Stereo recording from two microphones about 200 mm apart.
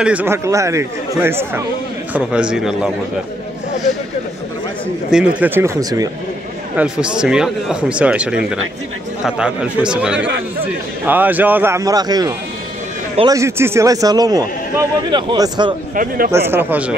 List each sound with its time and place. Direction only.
0.0 s speech: 10° right (ahead or behind)
5.1 s speech: 5° right (ahead or behind)
6.8 s speech: 5° right (ahead or behind)
10.2 s a sound: 60° right (ahead or behind)
11.1 s speech: 10° right (ahead or behind)
15.9 s speech: 45° right (ahead or behind)
16.3 s speech: 10° right (ahead or behind)